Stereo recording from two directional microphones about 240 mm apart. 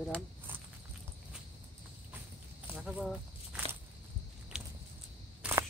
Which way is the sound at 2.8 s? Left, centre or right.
Centre.